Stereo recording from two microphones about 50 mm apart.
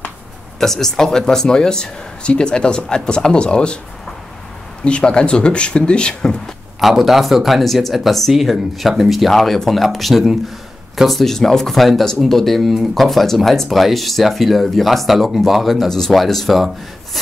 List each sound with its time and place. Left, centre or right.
0.6 s speech: centre
4.8 s speech: left
6.8 s speech: centre